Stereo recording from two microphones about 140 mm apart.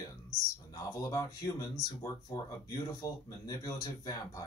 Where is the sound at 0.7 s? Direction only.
20° left (ahead or behind).